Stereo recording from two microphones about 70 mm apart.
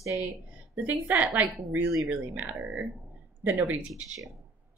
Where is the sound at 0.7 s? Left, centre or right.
Right.